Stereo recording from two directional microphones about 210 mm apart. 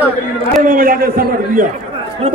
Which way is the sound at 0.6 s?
40° right (ahead or behind).